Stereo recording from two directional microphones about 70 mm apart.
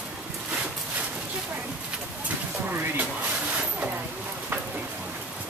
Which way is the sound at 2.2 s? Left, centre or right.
Right.